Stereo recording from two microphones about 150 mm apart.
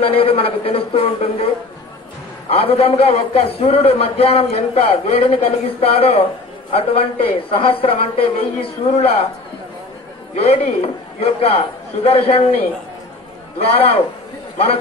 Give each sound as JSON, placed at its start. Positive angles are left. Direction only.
{"t": 0.0, "sound": "a man's voice", "side_deg": 40}
{"t": 2.5, "sound": "a man's voice", "side_deg": 40}
{"t": 10.3, "sound": "a man's voice", "side_deg": 40}
{"t": 13.6, "sound": "a man's voice", "side_deg": 40}